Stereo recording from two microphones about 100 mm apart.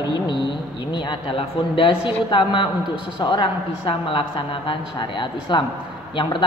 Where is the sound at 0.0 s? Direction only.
50° left (ahead or behind).